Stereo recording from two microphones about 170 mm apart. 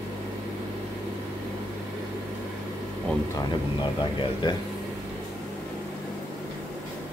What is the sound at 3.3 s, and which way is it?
Speech, 25° left (ahead or behind).